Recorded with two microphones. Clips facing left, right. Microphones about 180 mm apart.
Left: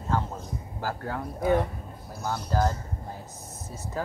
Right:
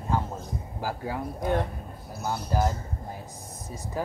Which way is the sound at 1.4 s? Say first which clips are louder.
Left 4 dB; 10° left (ahead or behind).